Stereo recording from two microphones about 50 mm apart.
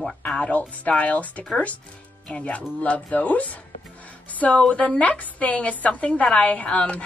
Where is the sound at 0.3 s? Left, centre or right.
Left.